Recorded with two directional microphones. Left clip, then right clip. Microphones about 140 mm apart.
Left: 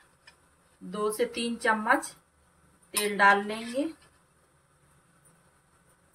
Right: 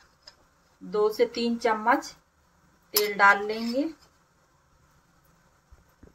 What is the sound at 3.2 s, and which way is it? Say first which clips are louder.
Speech: right 1 dB; 35° right (ahead or behind).